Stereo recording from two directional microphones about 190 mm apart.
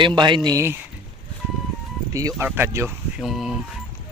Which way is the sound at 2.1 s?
15° right (ahead or behind).